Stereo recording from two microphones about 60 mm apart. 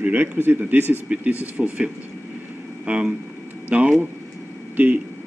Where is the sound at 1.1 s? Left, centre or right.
Right.